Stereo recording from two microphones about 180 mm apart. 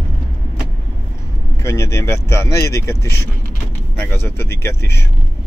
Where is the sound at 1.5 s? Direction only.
15° left (ahead or behind).